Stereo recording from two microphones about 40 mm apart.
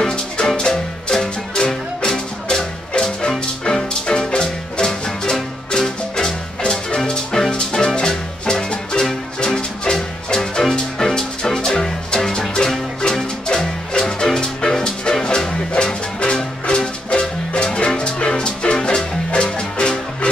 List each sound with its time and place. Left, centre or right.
0.0 s music: centre
10.3 s music: centre